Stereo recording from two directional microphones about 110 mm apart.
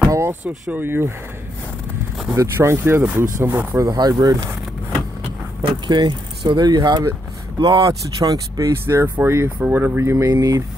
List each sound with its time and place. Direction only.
0.1 s a sound: 25° right (ahead or behind)
0.5 s speech: 15° right (ahead or behind)
2.3 s speech: 25° right (ahead or behind)
3.8 s speech: 35° right (ahead or behind)
5.9 s speech: 45° right (ahead or behind)